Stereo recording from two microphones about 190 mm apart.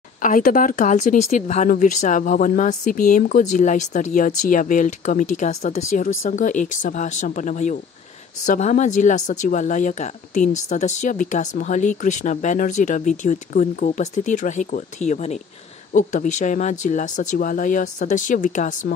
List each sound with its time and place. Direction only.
0.2 s a woman's voice: 45° left (ahead or behind)